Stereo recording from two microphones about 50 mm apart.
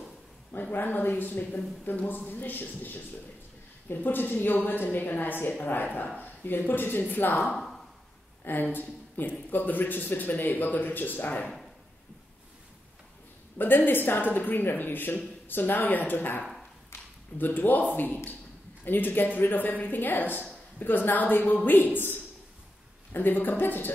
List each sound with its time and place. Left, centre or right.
0.5 s speech: left
7.4 s a sound: centre
8.7 s speech: left
13.6 s speech: left
16.9 s a sound: left
17.4 s speech: left